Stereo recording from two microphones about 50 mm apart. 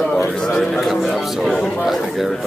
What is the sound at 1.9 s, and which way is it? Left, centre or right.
Speech, centre.